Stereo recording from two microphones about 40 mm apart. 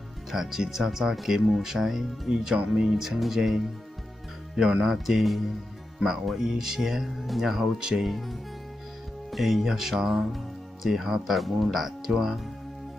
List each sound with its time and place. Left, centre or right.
0.3 s speech: centre
4.9 s speech: centre
7.8 s speech: centre
8.1 s speech: centre